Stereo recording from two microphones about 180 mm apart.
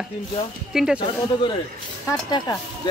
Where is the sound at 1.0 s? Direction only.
25° left (ahead or behind).